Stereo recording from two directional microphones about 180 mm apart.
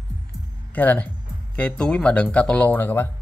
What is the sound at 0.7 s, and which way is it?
A man's voice, 10° left (ahead or behind).